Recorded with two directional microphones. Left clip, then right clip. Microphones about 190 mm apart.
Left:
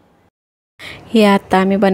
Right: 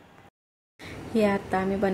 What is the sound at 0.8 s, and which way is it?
A woman's voice, 50° left (ahead or behind).